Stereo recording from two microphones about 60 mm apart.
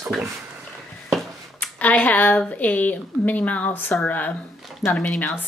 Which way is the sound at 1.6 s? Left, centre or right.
Left.